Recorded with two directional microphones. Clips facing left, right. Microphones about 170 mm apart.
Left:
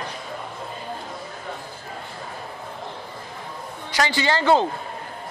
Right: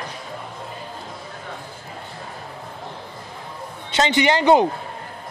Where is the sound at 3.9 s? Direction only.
20° right (ahead or behind).